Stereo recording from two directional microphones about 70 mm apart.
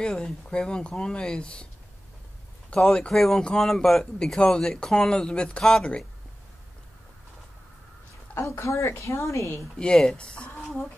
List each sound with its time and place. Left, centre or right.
0.0 s speech: centre
2.7 s speech: centre
8.4 s a woman's voice: left
9.8 s speech: centre
10.6 s chicken: centre